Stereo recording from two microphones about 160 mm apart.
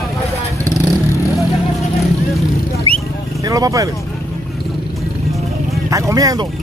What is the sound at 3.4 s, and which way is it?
Speech, 20° right (ahead or behind).